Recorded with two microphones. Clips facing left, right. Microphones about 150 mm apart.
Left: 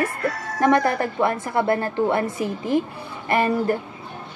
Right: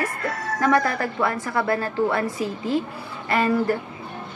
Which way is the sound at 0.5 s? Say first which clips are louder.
Left 2 dB; 20° left (ahead or behind).